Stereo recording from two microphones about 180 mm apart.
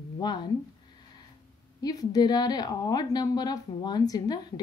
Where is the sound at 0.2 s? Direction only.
25° left (ahead or behind).